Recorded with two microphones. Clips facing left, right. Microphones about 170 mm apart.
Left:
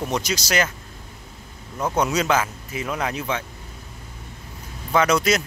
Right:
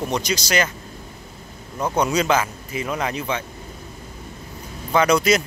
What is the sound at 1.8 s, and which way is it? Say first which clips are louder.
Speech: right 1 dB; 5° left (ahead or behind).